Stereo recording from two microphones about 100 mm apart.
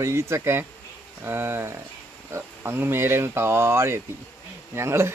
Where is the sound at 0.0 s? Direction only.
30° right (ahead or behind).